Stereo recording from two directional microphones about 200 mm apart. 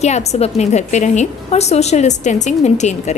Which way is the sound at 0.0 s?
35° left (ahead or behind).